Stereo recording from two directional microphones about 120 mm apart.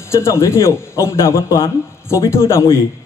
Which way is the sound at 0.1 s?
25° left (ahead or behind).